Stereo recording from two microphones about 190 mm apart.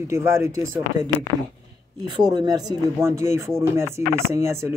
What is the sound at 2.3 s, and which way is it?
A man's voice, 20° right (ahead or behind).